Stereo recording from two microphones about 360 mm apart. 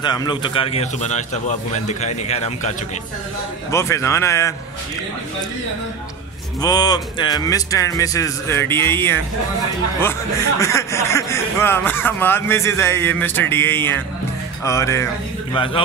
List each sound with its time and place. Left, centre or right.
0.0 s a man's voice: centre
3.7 s a man's voice: centre
6.6 s a man's voice: centre
10.6 s a man's voice: centre